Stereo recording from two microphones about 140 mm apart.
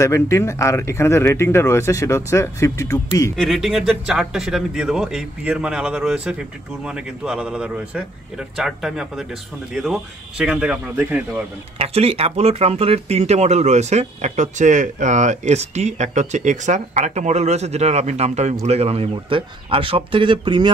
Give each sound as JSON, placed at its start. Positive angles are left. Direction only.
{"t": 0.0, "sound": "speech", "side_deg": 20}
{"t": 3.3, "sound": "speech", "side_deg": 0}
{"t": 11.8, "sound": "speech", "side_deg": -45}